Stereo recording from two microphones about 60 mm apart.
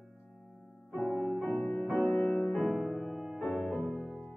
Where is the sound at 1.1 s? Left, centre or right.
Centre.